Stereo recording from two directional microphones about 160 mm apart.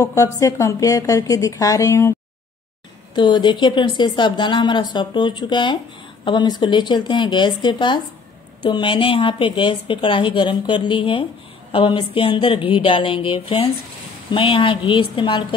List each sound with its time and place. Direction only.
0.0 s speech: 20° left (ahead or behind)
3.2 s a woman's voice: 30° left (ahead or behind)